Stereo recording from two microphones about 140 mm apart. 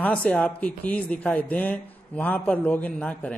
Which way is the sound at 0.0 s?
10° left (ahead or behind).